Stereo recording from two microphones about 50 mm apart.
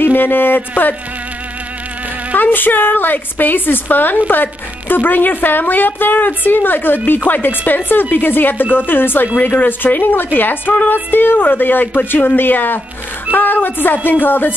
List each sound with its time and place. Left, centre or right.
0.0 s speech: left
2.3 s a woman's voice: left